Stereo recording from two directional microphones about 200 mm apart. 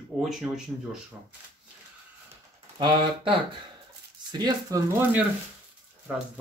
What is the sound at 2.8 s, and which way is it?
Speech, 25° right (ahead or behind).